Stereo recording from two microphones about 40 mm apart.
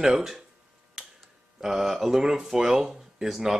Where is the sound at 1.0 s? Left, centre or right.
Centre.